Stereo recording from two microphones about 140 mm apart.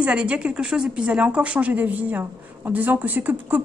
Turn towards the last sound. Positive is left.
turn(degrees=-10)  # may be behind; listen again after turning